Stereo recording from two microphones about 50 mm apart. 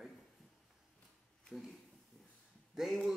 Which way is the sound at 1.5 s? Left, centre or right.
Centre.